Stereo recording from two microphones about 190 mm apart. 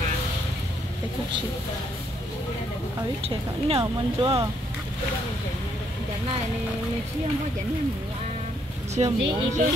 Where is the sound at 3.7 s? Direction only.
30° right (ahead or behind).